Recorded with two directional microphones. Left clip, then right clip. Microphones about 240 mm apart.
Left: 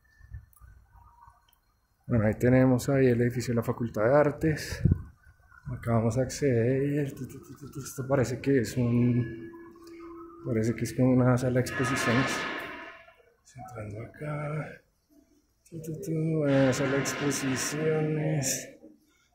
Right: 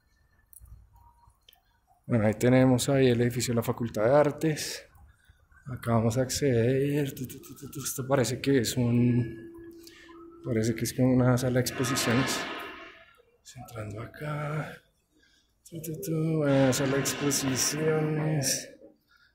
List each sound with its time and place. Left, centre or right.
2.0 s speech: centre
5.8 s speech: centre
10.4 s speech: centre
13.5 s speech: centre
15.8 s speech: centre